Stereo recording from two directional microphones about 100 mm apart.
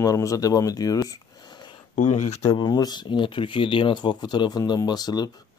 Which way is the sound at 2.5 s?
40° left (ahead or behind).